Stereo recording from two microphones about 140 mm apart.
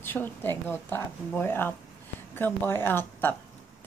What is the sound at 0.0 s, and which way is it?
A woman's voice, 15° left (ahead or behind).